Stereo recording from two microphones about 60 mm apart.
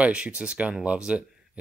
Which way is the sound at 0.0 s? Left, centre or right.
Centre.